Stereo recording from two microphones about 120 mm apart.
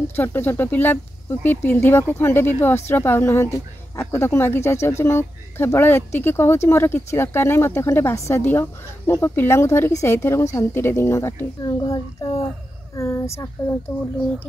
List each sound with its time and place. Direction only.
0.1 s speech: 20° left (ahead or behind)